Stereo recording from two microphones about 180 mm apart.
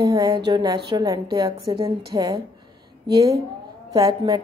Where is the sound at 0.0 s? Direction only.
25° right (ahead or behind).